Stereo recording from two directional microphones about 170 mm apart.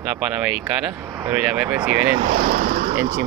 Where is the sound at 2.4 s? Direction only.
50° right (ahead or behind).